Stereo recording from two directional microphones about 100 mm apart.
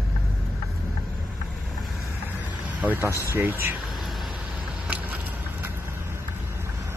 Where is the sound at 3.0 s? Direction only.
30° left (ahead or behind).